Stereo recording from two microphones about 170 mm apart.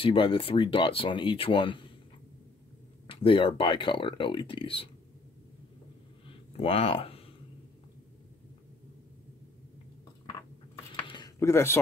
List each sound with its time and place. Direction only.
0.0 s speech: 30° left (ahead or behind)
3.1 s speech: 30° left (ahead or behind)
6.6 s speech: 35° left (ahead or behind)
11.1 s a sound: 25° left (ahead or behind)
11.3 s speech: 15° left (ahead or behind)